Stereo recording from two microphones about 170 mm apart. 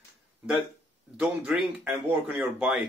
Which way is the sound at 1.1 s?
5° right (ahead or behind).